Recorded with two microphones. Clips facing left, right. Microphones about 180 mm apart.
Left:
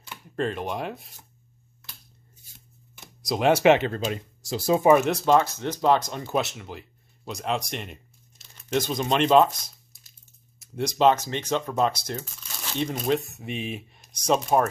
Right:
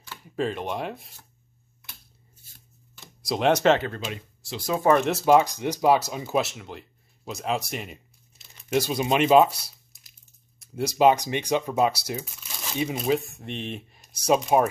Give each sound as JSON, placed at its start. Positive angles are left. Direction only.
{"t": 0.4, "sound": "speech", "side_deg": 0}
{"t": 3.2, "sound": "speech", "side_deg": 0}
{"t": 3.6, "sound": "speech", "side_deg": 15}
{"t": 3.9, "sound": "speech", "side_deg": 40}
{"t": 4.8, "sound": "speech", "side_deg": 5}
{"t": 5.1, "sound": "speech", "side_deg": -10}